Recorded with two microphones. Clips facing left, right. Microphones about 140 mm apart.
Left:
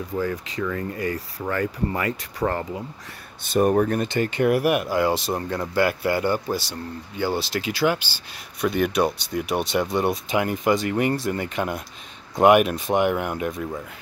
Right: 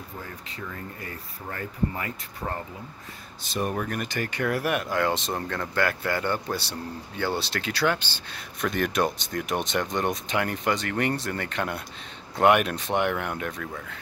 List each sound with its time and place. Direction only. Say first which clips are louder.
0.2 s speech: left 15 dB; 90° left
3.5 s speech: left 10 dB; 45° left (ahead or behind)
4.0 s speech: left 7 dB; 25° left (ahead or behind)